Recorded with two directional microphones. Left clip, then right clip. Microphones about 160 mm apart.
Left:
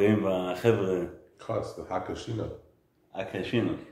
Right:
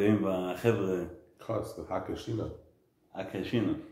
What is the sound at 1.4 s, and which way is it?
Speech, 20° right (ahead or behind).